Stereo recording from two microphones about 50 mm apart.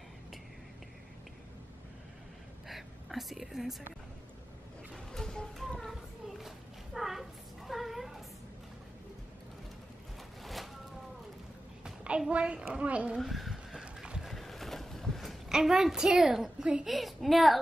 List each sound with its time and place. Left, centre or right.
2.7 s speech: centre
4.9 s music: centre
5.8 s children playing: centre
10.4 s a sound: centre
11.8 s a sound: right
12.3 s a child's voice: right
13.2 s a sound: centre
14.2 s boat: centre
15.5 s a woman's voice: centre